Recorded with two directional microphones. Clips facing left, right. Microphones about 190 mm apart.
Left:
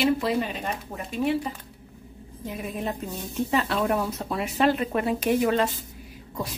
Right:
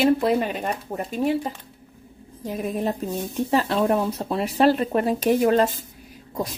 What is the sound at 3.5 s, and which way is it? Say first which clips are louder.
Speech: right 4 dB; 30° right (ahead or behind).